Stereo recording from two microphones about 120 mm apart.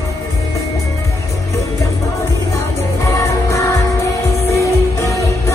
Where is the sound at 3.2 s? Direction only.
25° left (ahead or behind).